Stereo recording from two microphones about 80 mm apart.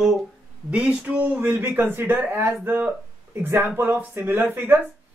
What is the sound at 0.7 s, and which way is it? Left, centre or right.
Speech, centre.